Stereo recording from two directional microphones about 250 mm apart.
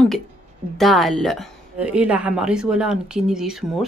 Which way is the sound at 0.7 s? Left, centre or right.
Centre.